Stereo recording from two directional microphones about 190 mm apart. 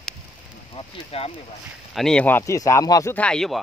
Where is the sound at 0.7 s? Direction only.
30° left (ahead or behind).